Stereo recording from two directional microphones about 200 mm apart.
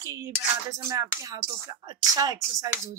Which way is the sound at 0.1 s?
15° right (ahead or behind).